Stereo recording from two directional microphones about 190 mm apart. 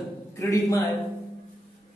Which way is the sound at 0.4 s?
15° left (ahead or behind).